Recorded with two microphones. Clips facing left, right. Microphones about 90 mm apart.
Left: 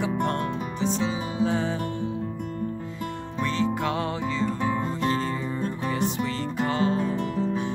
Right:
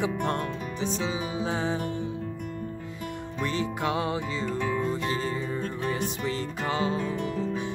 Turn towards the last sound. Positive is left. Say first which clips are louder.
# left 3 dB
turn(degrees=25)  # may be behind; listen again after turning